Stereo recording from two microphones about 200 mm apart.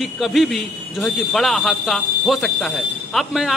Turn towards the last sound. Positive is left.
turn(degrees=0)  # may be behind; listen again after turning